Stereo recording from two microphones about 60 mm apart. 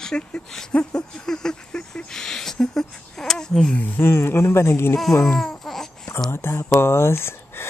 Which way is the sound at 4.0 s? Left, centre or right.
Left.